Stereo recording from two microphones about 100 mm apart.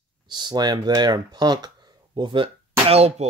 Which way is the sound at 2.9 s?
90° right.